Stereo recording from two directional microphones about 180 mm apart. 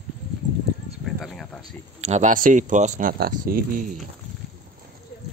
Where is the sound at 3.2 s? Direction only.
55° right (ahead or behind).